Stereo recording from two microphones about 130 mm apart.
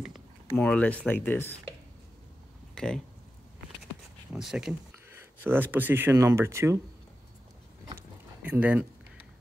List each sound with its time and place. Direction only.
0.6 s speech: 10° left (ahead or behind)
2.7 s a sound: 5° left (ahead or behind)
4.3 s speech: 5° right (ahead or behind)
5.4 s speech: 15° right (ahead or behind)
8.5 s speech: 10° right (ahead or behind)